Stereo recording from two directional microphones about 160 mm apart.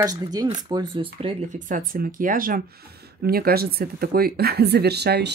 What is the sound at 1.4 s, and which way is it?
Speech, 50° right (ahead or behind).